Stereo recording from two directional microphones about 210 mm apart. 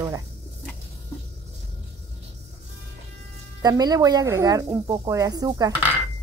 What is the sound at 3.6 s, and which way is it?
Speech, 20° right (ahead or behind).